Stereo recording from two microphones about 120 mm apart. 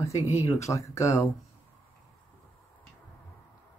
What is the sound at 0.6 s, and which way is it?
Speech, 25° left (ahead or behind).